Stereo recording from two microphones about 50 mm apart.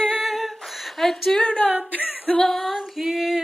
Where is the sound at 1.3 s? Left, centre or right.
Centre.